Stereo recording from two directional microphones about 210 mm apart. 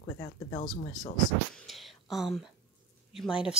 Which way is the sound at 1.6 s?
Centre (ahead or behind).